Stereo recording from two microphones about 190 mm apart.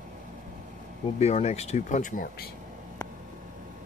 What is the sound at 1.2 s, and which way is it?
Speech, 35° left (ahead or behind).